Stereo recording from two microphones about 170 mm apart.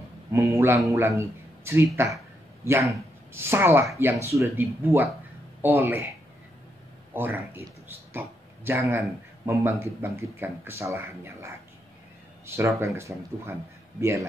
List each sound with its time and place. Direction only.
0.3 s a woman's voice: 15° right (ahead or behind)
7.2 s speech: 15° right (ahead or behind)
8.1 s a sound: 15° right (ahead or behind)
9.5 s speech: 15° right (ahead or behind)